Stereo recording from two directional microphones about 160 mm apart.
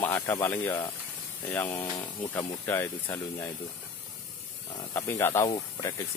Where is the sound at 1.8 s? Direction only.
30° left (ahead or behind).